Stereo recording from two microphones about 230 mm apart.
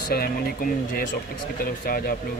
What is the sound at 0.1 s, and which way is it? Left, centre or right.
Speech, left.